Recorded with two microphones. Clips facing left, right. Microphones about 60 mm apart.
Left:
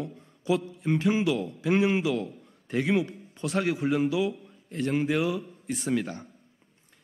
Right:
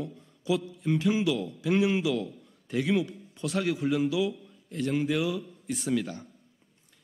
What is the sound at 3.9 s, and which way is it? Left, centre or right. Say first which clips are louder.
A man's voice: left 1 dB; left.